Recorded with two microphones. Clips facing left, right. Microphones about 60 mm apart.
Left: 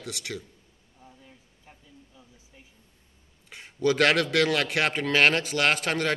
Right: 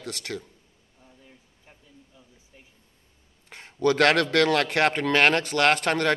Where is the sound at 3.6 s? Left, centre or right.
Centre.